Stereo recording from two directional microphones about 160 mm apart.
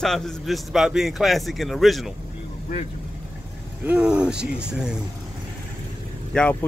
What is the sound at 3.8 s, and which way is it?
A man's voice, 10° right (ahead or behind).